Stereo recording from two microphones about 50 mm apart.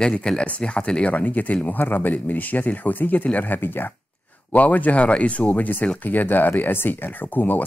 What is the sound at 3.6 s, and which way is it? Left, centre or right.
Speech, left.